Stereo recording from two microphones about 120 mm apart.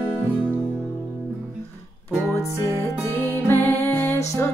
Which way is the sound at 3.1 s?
20° left (ahead or behind).